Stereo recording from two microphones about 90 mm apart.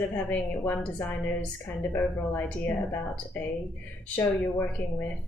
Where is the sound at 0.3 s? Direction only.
20° left (ahead or behind).